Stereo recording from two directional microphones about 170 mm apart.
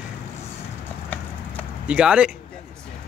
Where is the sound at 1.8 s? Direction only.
5° right (ahead or behind).